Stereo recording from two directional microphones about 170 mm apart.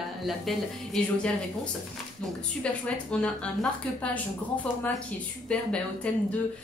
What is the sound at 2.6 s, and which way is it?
A woman's voice, 5° left (ahead or behind).